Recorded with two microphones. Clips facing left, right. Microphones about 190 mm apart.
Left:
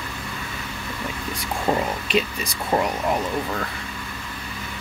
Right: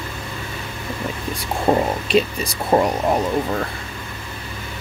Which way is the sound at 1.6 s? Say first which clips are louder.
Right 5 dB; 35° right (ahead or behind).